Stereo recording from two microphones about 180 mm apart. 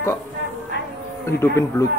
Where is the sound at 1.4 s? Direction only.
15° left (ahead or behind).